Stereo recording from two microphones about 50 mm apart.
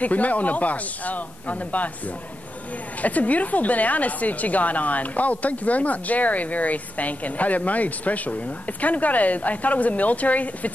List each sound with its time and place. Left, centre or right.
0.0 s a woman's voice: left
3.0 s a woman's voice: left